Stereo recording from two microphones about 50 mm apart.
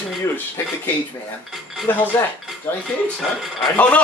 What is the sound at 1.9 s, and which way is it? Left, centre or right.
Speech, left.